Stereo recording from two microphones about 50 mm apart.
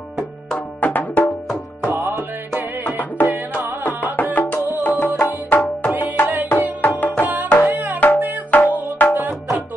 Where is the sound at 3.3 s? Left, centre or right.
Right.